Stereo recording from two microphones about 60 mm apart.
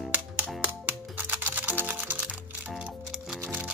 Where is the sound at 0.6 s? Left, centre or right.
Right.